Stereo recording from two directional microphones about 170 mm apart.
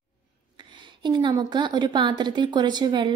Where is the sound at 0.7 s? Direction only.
25° right (ahead or behind).